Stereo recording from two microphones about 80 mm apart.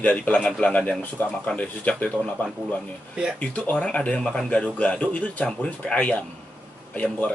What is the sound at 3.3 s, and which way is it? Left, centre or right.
Speech, centre.